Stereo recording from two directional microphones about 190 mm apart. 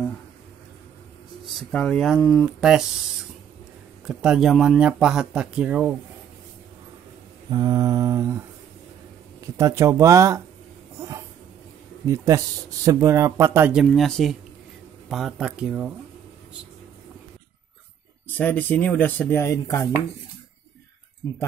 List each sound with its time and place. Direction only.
1.4 s speech: centre (ahead or behind)
4.0 s speech: 5° right (ahead or behind)
7.5 s speech: 20° right (ahead or behind)
9.6 s speech: 15° right (ahead or behind)
11.0 s a sound: 15° right (ahead or behind)
12.8 s speech: 15° right (ahead or behind)
13.8 s speech: 5° left (ahead or behind)
18.3 s speech: 10° left (ahead or behind)